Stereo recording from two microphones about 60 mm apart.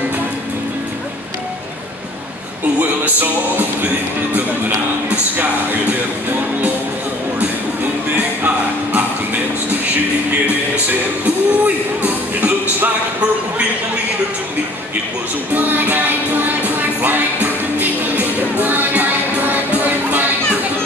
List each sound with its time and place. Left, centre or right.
2.8 s music: right
8.2 s music: right
10.9 s music: right
15.5 s music: right